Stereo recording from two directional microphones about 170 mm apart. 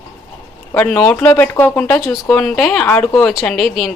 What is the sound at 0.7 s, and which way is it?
Speech, 5° left (ahead or behind).